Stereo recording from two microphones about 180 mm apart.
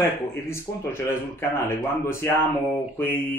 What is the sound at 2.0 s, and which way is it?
Speech, 15° left (ahead or behind).